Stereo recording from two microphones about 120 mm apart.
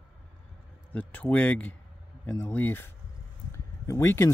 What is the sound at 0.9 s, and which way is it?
Speech, 10° left (ahead or behind).